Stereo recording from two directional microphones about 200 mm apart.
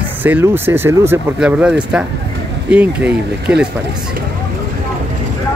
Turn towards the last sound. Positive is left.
turn(degrees=-5)  # may be behind; listen again after turning